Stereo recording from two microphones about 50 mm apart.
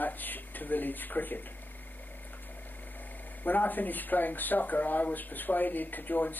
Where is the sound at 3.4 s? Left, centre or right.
Left.